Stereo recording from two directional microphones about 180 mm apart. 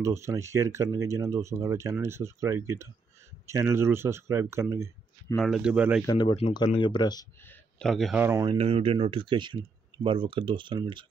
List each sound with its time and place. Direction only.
0.0 s speech: 15° right (ahead or behind)
5.4 s speech: 5° right (ahead or behind)
6.0 s speech: 25° left (ahead or behind)
7.4 s speech: 5° left (ahead or behind)
8.2 s speech: 15° right (ahead or behind)
8.5 s speech: 35° right (ahead or behind)